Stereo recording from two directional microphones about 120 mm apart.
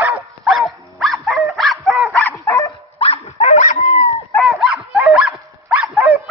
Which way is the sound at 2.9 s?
60° left (ahead or behind).